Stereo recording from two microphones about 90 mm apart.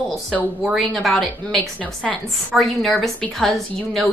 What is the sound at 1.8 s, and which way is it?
Speech, 15° left (ahead or behind).